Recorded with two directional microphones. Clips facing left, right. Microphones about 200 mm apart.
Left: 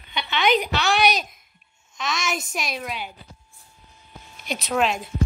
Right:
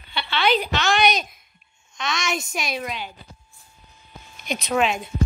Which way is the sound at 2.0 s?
Centre (ahead or behind).